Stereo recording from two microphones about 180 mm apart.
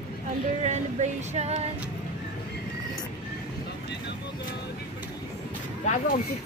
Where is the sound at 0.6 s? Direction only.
40° right (ahead or behind).